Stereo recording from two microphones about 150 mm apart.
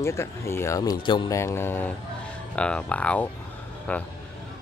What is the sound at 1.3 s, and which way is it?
Speech, 15° left (ahead or behind).